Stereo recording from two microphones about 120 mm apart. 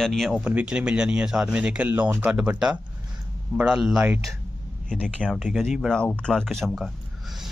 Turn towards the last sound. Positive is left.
turn(degrees=0)  # may be behind; listen again after turning